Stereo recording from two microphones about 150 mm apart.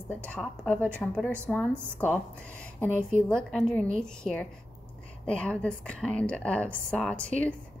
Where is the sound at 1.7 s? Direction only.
15° right (ahead or behind).